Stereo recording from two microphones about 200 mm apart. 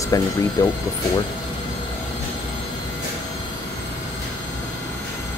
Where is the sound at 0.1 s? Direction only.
15° left (ahead or behind).